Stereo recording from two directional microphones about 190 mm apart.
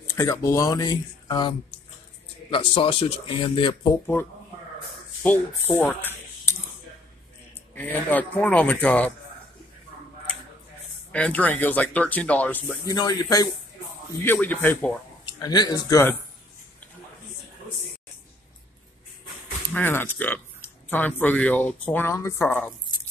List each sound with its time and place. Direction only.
0.0 s speech: 15° left (ahead or behind)
2.5 s speech: 30° left (ahead or behind)
5.2 s speech: 10° left (ahead or behind)
7.7 s speech: 10° left (ahead or behind)
11.1 s speech: 5° left (ahead or behind)
15.2 s speech: 20° left (ahead or behind)
19.7 s speech: 10° left (ahead or behind)